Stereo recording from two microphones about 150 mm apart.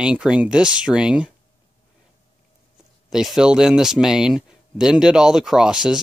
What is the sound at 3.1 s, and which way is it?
Speech, 5° right (ahead or behind).